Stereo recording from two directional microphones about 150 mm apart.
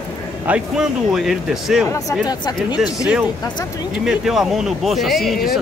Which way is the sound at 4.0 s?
5° right (ahead or behind).